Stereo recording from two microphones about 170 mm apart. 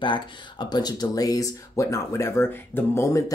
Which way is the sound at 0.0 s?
30° left (ahead or behind).